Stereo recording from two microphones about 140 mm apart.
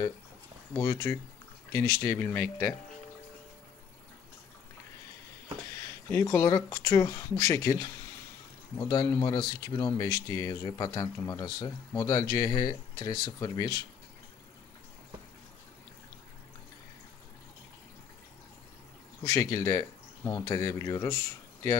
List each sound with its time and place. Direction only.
0.7 s speech: 20° left (ahead or behind)
6.2 s speech: 25° left (ahead or behind)
19.2 s speech: 25° left (ahead or behind)